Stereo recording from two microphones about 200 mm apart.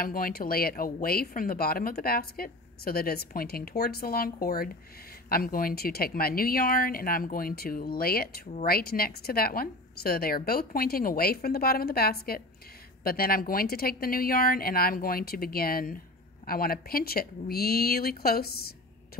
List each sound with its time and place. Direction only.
0.0 s speech: 45° left (ahead or behind)